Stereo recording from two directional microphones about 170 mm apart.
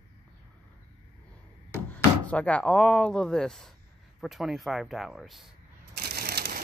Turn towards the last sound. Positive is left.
turn(degrees=-70)  # may be behind; listen again after turning